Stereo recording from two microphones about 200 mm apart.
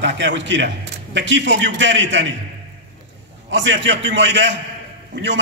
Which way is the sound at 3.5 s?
65° right (ahead or behind).